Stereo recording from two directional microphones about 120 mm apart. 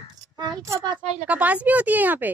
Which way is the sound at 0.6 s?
25° right (ahead or behind).